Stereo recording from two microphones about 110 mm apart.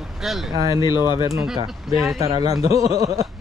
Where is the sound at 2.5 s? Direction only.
30° right (ahead or behind).